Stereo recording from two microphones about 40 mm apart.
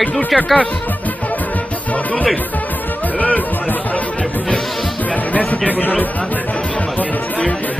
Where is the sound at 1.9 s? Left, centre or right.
Left.